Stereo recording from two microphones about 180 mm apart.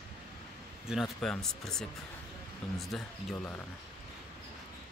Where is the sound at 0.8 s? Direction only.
Centre (ahead or behind).